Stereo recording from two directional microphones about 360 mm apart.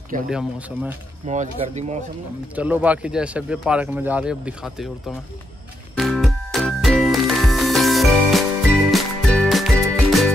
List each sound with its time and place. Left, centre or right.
0.3 s speech: centre
1.2 s speech: centre
2.5 s speech: centre
5.9 s music: centre